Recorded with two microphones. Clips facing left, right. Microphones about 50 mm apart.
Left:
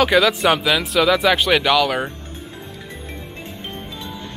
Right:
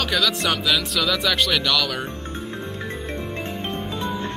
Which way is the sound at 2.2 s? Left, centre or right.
Right.